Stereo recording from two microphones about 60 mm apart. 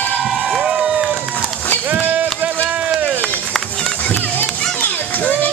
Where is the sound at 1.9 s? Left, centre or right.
Right.